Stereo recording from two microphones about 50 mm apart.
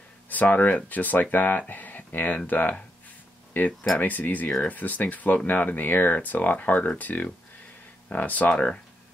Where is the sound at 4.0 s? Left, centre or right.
Left.